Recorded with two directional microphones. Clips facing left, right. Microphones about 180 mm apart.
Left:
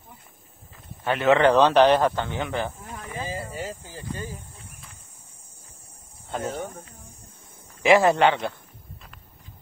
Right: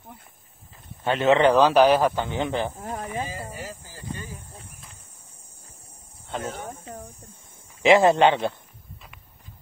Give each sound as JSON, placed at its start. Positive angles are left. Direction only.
{"t": 1.0, "sound": "a man's voice", "side_deg": -25}
{"t": 1.5, "sound": "speech", "side_deg": -5}
{"t": 2.8, "sound": "a sound", "side_deg": -35}
{"t": 3.5, "sound": "a sound", "side_deg": 25}
{"t": 6.2, "sound": "cricket", "side_deg": 0}
{"t": 7.8, "sound": "a man's voice", "side_deg": -25}